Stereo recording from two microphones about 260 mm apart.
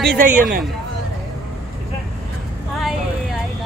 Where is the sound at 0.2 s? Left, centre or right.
Right.